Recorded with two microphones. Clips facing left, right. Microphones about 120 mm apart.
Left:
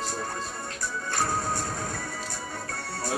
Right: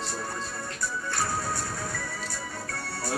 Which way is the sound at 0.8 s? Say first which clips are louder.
Left 1 dB; 50° left (ahead or behind).